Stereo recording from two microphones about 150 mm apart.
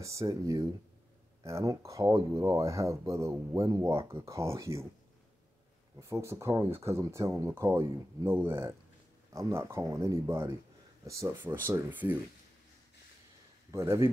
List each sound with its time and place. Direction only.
0.0 s speech: 20° right (ahead or behind)
5.9 s speech: 20° right (ahead or behind)
13.7 s speech: 20° right (ahead or behind)